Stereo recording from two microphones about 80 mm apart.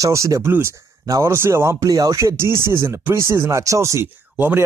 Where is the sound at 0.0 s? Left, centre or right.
Right.